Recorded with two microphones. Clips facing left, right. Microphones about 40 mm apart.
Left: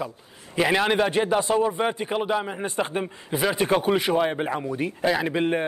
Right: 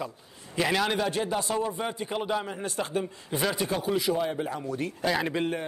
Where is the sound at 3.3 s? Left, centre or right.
Centre.